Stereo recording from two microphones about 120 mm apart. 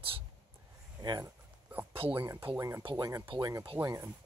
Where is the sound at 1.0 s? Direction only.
35° right (ahead or behind).